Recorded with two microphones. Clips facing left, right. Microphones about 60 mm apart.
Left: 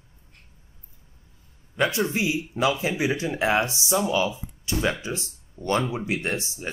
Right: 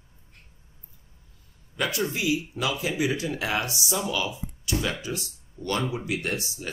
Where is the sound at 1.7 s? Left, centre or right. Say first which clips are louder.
Left 4 dB; left.